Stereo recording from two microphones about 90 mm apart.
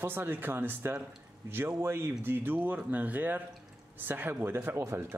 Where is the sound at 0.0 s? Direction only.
25° right (ahead or behind).